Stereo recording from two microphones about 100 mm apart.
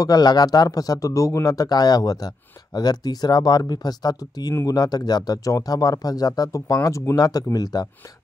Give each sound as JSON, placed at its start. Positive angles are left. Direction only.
{"t": 0.0, "sound": "speech", "side_deg": 40}